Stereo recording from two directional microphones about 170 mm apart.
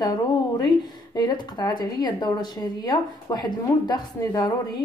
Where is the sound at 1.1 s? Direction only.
25° left (ahead or behind).